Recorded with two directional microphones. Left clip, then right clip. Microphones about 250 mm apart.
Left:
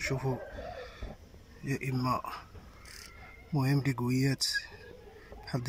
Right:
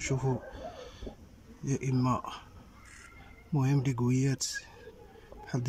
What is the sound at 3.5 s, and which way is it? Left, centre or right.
Speech, centre.